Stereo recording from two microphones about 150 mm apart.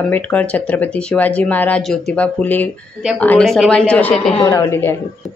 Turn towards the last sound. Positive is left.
turn(degrees=15)  # may be behind; listen again after turning